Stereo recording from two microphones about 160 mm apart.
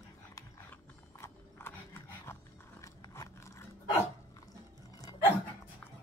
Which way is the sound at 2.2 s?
15° left (ahead or behind).